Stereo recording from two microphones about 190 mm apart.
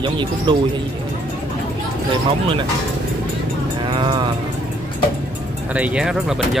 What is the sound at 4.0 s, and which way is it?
Speech, 25° right (ahead or behind).